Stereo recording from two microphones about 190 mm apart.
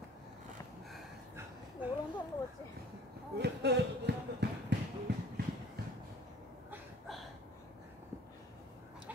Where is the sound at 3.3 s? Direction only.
60° right (ahead or behind).